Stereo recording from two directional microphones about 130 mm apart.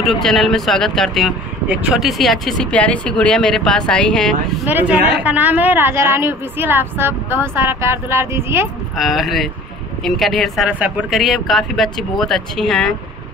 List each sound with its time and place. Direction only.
0.0 s speech: centre (ahead or behind)
1.7 s speech: 10° right (ahead or behind)
4.6 s a woman's voice: 10° right (ahead or behind)
8.9 s speech: centre (ahead or behind)
10.7 s a woman's voice: 10° right (ahead or behind)
11.1 s speech: centre (ahead or behind)